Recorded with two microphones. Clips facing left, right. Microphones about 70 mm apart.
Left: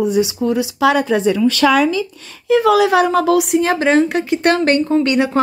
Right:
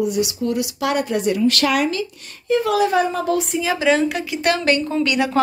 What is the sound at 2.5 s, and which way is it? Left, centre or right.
A woman's voice, left.